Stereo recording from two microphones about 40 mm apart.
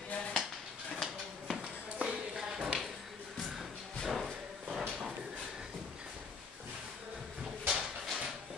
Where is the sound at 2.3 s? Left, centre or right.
Centre.